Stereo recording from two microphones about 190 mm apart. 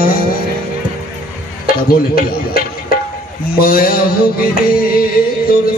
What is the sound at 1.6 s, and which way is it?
Speech, 50° left (ahead or behind).